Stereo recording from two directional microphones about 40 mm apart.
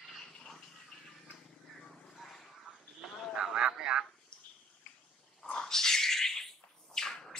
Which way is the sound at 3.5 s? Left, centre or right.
Centre.